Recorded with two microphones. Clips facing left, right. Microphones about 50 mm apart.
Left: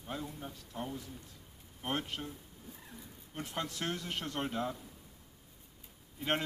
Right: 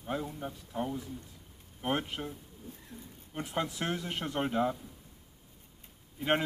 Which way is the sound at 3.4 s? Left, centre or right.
Centre.